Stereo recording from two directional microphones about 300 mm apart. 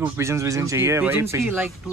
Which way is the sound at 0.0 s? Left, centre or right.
Centre.